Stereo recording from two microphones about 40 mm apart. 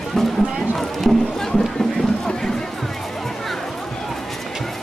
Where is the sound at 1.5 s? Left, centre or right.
Centre.